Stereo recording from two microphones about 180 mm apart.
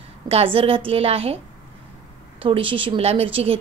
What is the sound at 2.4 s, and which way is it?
A woman's voice, 30° right (ahead or behind).